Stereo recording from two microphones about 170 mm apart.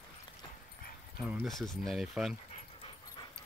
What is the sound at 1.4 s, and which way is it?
Speech, centre (ahead or behind).